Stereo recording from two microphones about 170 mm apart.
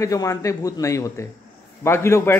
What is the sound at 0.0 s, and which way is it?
A man's voice, 20° left (ahead or behind).